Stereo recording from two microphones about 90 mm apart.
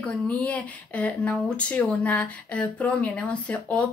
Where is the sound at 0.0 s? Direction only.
15° left (ahead or behind).